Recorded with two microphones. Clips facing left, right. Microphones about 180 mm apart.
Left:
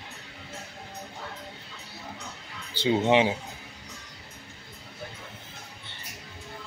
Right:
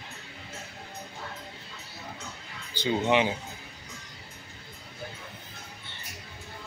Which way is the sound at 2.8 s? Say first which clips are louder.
Left 3 dB; 25° left (ahead or behind).